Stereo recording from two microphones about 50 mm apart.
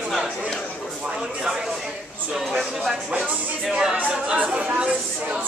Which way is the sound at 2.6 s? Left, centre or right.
Centre.